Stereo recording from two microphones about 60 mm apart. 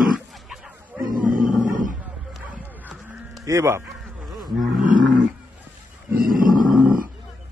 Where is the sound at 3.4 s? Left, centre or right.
Right.